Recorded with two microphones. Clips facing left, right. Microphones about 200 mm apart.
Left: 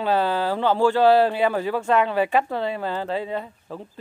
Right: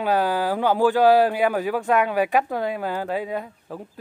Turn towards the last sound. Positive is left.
turn(degrees=-10)  # may be behind; listen again after turning